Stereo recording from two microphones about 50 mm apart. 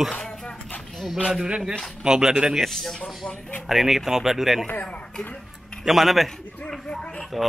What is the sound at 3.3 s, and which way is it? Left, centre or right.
Speech, left.